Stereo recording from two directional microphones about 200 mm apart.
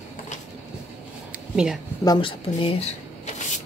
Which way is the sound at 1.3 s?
5° right (ahead or behind).